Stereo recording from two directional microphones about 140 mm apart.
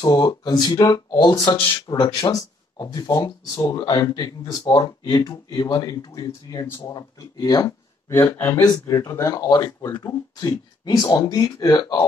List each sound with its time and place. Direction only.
0.0 s speech: 25° left (ahead or behind)
8.5 s speech: 25° left (ahead or behind)